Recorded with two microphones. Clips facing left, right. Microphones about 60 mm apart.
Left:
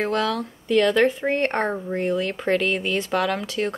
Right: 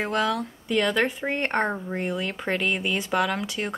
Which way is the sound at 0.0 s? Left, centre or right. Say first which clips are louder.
Left 2 dB; centre.